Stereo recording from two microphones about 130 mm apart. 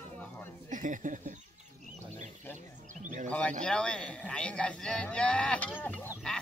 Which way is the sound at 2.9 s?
75° right (ahead or behind).